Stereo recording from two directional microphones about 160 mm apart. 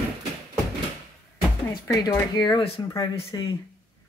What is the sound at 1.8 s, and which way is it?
Speech, 20° left (ahead or behind).